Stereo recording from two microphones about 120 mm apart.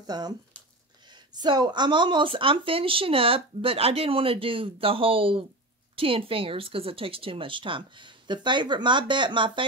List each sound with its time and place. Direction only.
0.0 s speech: 35° right (ahead or behind)